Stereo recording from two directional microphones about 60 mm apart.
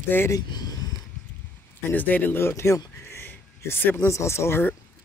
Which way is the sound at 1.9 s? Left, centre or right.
Left.